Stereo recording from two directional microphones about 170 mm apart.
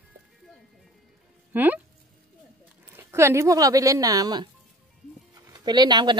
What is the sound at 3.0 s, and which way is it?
Speech, 15° right (ahead or behind).